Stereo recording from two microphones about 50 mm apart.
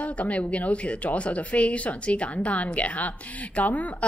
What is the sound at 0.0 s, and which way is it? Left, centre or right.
A woman's voice, left.